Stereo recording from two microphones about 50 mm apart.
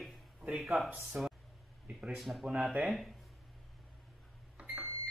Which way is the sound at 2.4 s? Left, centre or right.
Centre.